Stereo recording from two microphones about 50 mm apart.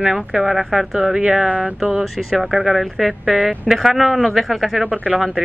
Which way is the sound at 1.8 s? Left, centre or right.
Centre.